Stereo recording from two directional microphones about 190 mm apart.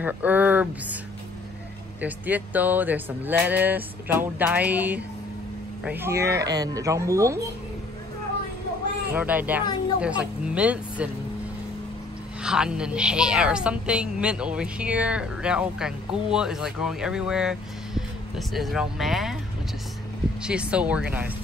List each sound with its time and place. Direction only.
0.0 s speech: 10° right (ahead or behind)
2.0 s speech: 10° right (ahead or behind)
9.1 s speech: 10° right (ahead or behind)
12.4 s speech: 5° right (ahead or behind)
20.4 s speech: 5° right (ahead or behind)